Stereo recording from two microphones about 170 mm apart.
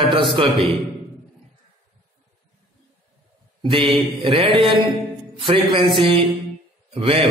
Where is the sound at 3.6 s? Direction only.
30° right (ahead or behind).